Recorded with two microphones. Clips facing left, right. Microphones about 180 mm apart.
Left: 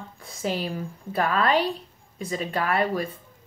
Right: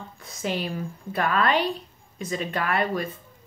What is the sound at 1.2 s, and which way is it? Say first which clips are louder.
A woman's voice: even; 35° left (ahead or behind).